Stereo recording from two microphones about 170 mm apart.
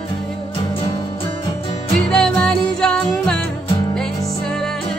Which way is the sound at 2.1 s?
5° left (ahead or behind).